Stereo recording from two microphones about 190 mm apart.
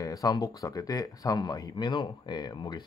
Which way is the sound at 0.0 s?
20° left (ahead or behind).